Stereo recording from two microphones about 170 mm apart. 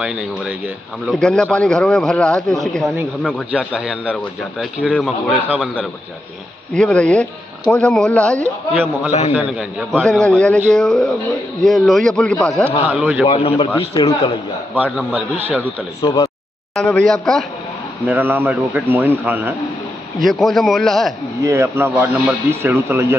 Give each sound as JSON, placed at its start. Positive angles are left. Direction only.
{"t": 0.0, "sound": "a man's voice", "side_deg": -5}
{"t": 3.5, "sound": "a man's voice", "side_deg": -5}
{"t": 6.7, "sound": "speech", "side_deg": 5}
{"t": 9.3, "sound": "a man's voice", "side_deg": -10}
{"t": 13.3, "sound": "a man's voice", "side_deg": 30}
{"t": 14.9, "sound": "a man's voice", "side_deg": -5}
{"t": 16.0, "sound": "speech", "side_deg": 25}
{"t": 16.7, "sound": "speech", "side_deg": 5}
{"t": 18.0, "sound": "a man's voice", "side_deg": -10}
{"t": 20.2, "sound": "speech", "side_deg": 0}
{"t": 21.4, "sound": "a man's voice", "side_deg": -15}